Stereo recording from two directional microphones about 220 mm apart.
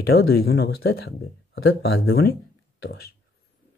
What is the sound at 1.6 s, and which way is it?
Speech, 60° left (ahead or behind).